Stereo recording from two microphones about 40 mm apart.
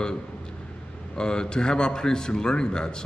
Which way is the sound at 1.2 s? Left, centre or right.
Left.